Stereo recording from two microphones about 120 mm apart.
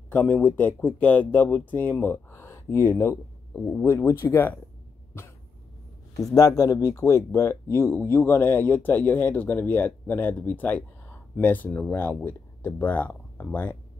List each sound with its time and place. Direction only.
0.1 s speech: 15° left (ahead or behind)
6.3 s speech: 30° left (ahead or behind)